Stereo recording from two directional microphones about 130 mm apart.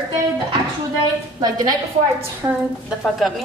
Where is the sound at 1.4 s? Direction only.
30° right (ahead or behind).